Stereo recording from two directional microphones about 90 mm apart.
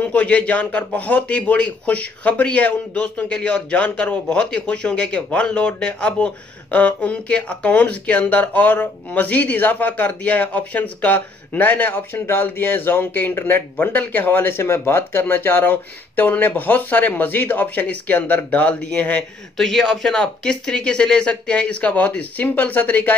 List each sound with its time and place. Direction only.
0.1 s speech: 15° left (ahead or behind)
19.5 s speech: 5° left (ahead or behind)